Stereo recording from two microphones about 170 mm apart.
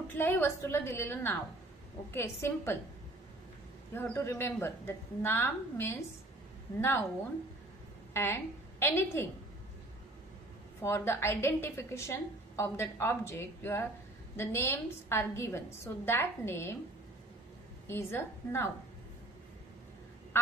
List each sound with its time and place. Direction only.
0.1 s a woman's voice: 15° left (ahead or behind)
3.9 s a woman's voice: 15° left (ahead or behind)
8.1 s a woman's voice: 15° left (ahead or behind)
10.8 s a woman's voice: 15° left (ahead or behind)
17.8 s a woman's voice: 15° left (ahead or behind)